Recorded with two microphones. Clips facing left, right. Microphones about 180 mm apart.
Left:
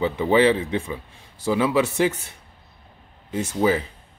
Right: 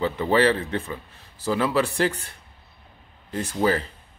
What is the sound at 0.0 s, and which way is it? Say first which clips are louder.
Speech: left 2 dB; 15° left (ahead or behind).